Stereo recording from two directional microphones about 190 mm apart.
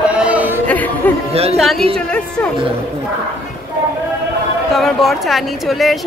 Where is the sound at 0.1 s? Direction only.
5° right (ahead or behind).